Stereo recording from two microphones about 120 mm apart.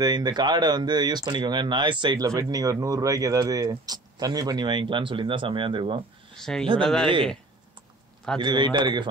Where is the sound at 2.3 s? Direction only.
30° right (ahead or behind).